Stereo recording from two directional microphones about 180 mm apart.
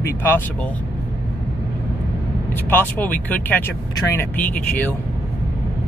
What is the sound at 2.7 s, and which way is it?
Speech, 10° left (ahead or behind).